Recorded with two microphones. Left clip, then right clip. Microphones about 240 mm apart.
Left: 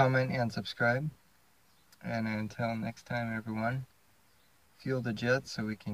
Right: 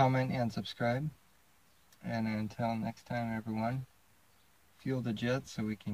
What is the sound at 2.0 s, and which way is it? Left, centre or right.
Speech, centre.